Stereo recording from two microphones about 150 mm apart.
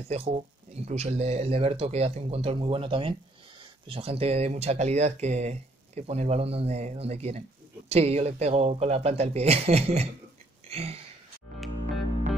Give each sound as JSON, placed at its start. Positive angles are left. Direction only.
{"t": 0.1, "sound": "speech", "side_deg": -45}